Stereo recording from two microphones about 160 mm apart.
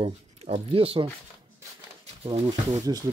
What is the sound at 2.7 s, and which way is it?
Speech, 25° right (ahead or behind).